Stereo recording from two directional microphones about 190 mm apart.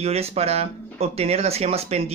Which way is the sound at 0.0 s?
35° right (ahead or behind).